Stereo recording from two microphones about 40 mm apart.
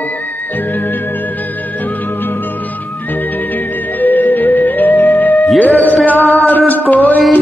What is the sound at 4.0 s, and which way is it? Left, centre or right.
Music, left.